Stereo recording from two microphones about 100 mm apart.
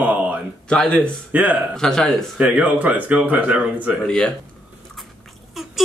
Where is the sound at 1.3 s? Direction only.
15° right (ahead or behind).